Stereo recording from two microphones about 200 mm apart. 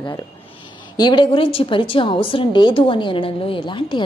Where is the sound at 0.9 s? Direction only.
20° left (ahead or behind).